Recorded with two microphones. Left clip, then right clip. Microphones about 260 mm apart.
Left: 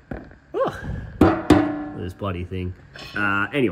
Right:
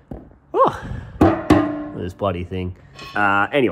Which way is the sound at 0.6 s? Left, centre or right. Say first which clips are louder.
Right 7 dB; centre.